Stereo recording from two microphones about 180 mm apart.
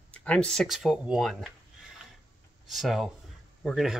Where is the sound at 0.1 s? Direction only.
5° left (ahead or behind).